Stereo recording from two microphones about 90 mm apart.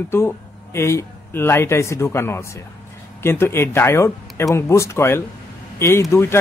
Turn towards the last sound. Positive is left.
turn(degrees=30)  # may be behind; listen again after turning